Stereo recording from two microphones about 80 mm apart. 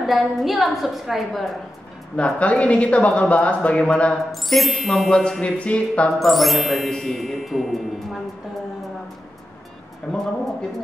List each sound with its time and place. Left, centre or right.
0.0 s speech: centre
2.1 s speech: centre
4.3 s speech: centre
6.1 s speech: centre
10.1 s speech: centre